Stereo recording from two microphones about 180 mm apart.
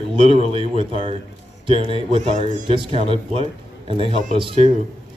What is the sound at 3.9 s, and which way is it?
Speech, 30° right (ahead or behind).